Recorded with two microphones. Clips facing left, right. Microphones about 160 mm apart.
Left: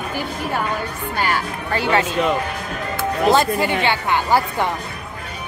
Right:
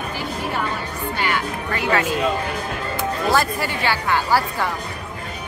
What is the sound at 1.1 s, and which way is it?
Speech, 40° left (ahead or behind).